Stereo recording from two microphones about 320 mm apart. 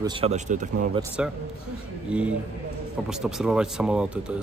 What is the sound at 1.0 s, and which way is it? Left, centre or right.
Speech, centre.